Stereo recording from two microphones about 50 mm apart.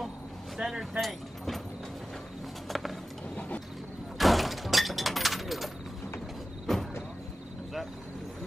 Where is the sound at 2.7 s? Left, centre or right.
Centre.